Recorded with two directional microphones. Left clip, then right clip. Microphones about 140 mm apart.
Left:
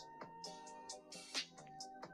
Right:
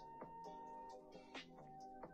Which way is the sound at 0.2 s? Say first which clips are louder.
Left 2 dB; 20° left (ahead or behind).